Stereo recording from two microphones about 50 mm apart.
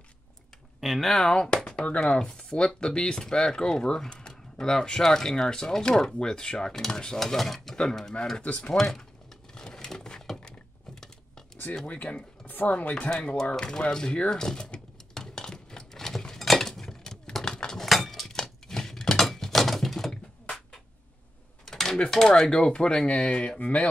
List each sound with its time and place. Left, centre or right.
0.7 s speech: centre
8.4 s speech: left
9.5 s a sound: centre
11.7 s speech: left
13.5 s speech: centre
14.1 s dishes: centre
15.8 s vehicle: centre
16.3 s keys jangling: centre
17.8 s a sound: centre
21.6 s a sound: centre
22.1 s speech: centre; by 23.9 s left